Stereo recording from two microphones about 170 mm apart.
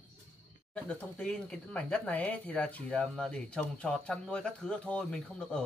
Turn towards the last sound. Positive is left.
turn(degrees=5)  # may be behind; listen again after turning